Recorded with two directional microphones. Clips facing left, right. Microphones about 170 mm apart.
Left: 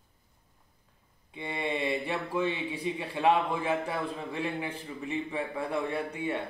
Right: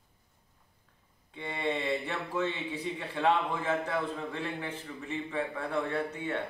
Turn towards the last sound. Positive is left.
turn(degrees=10)  # may be behind; listen again after turning